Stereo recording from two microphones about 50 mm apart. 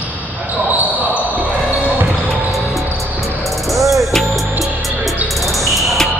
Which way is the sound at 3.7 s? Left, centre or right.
Right.